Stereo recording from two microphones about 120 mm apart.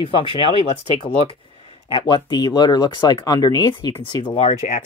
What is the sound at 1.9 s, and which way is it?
Speech, 40° left (ahead or behind).